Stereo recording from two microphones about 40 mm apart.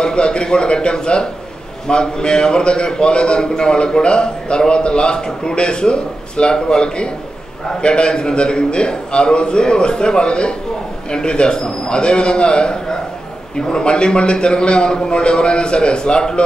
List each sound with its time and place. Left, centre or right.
0.0 s a man's voice: left